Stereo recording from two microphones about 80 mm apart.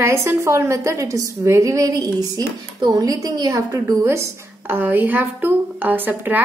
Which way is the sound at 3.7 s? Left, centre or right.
Right.